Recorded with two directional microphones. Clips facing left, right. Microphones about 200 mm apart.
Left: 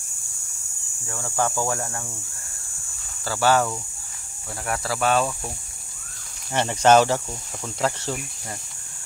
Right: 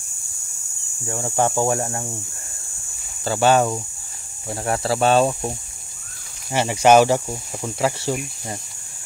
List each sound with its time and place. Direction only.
1.0 s speech: 25° right (ahead or behind)
3.3 s speech: 20° right (ahead or behind)
6.5 s speech: 10° right (ahead or behind)